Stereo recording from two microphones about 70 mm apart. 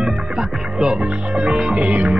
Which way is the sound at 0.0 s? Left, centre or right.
Centre.